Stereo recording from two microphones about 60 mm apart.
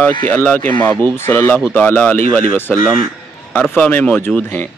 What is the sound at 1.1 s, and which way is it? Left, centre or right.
Speech, left.